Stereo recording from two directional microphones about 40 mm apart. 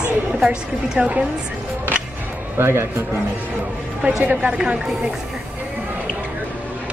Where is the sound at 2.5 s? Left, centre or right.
Right.